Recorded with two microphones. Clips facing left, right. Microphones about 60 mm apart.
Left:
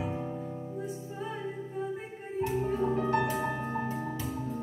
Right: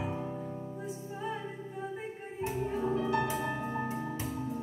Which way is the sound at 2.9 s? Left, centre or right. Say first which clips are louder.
Left 2 dB; left.